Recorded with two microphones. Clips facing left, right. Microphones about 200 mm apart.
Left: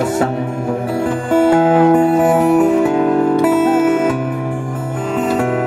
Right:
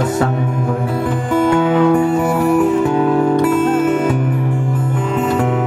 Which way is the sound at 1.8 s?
50° left (ahead or behind).